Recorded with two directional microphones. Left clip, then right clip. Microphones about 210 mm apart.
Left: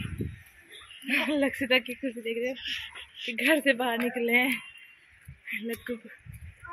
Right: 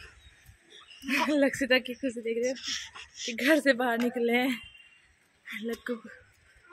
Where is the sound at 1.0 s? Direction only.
15° right (ahead or behind).